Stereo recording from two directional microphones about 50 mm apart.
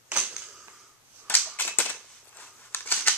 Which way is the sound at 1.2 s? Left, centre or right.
Left.